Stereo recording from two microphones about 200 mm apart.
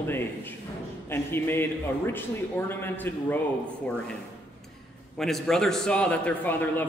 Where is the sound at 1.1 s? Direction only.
10° left (ahead or behind).